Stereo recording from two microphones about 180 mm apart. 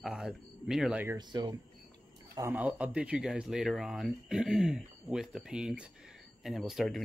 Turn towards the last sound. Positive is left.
turn(degrees=0)  # may be behind; listen again after turning